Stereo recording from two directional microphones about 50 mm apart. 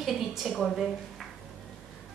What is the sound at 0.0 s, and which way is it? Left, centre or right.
Speech, centre.